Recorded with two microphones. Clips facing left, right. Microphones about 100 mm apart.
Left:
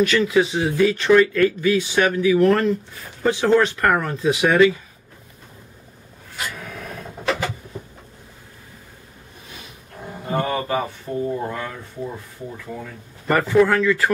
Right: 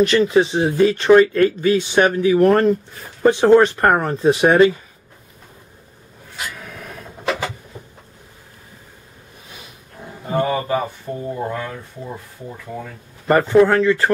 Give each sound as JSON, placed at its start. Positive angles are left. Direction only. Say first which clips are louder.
{"t": 0.1, "sound": "speech", "louder": "right 3 dB", "side_deg": -35}
{"t": 10.3, "sound": "speech", "louder": "right 3 dB", "side_deg": -5}
{"t": 13.3, "sound": "speech", "louder": "right 3 dB", "side_deg": -30}